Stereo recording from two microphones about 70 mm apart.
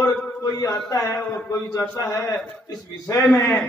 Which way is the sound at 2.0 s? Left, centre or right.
Left.